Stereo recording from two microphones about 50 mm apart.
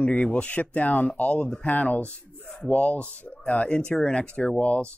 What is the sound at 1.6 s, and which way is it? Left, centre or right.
Speech, left.